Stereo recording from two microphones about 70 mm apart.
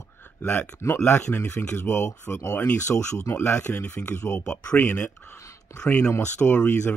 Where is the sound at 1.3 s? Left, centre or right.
Left.